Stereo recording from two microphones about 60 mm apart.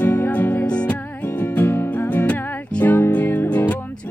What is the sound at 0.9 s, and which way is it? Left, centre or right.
Music, left.